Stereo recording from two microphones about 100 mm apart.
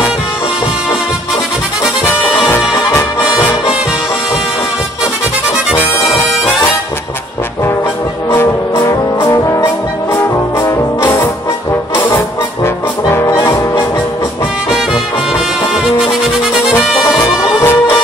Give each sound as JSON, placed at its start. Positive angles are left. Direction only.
{"t": 2.9, "sound": "music", "side_deg": 25}
{"t": 5.8, "sound": "music", "side_deg": 20}
{"t": 8.3, "sound": "music", "side_deg": 30}
{"t": 10.6, "sound": "brass instrument", "side_deg": 30}
{"t": 12.6, "sound": "brass instrument", "side_deg": 25}
{"t": 16.8, "sound": "brass instrument", "side_deg": 0}
{"t": 17.2, "sound": "brass instrument", "side_deg": 25}